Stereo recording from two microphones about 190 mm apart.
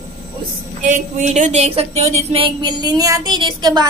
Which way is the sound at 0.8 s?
40° right (ahead or behind).